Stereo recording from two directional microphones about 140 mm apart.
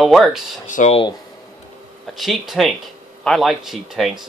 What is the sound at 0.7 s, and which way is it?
Speech, 60° left (ahead or behind).